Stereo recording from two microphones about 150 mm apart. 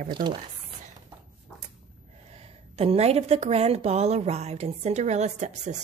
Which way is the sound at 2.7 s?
45° right (ahead or behind).